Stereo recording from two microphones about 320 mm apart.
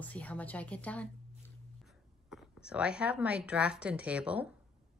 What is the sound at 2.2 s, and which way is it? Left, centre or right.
Speech, centre.